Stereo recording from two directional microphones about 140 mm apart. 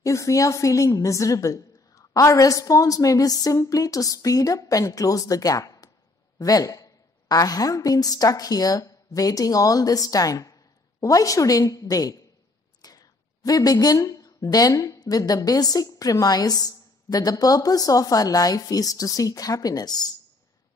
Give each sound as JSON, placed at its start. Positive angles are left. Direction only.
{"t": 0.0, "sound": "a woman's voice", "side_deg": 20}